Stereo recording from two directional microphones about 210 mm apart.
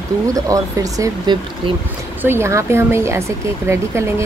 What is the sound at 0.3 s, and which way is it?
Speech, 15° right (ahead or behind).